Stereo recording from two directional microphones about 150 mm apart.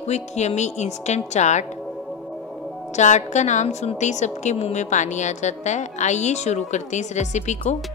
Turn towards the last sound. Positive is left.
turn(degrees=50)  # may be behind; listen again after turning